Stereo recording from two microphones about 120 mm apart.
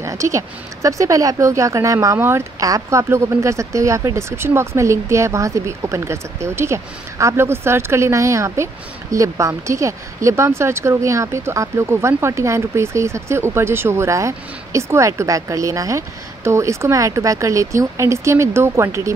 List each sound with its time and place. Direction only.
0.0 s speech: 25° right (ahead or behind)